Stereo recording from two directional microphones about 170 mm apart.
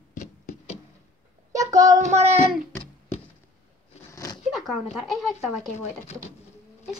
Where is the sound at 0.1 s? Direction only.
45° left (ahead or behind).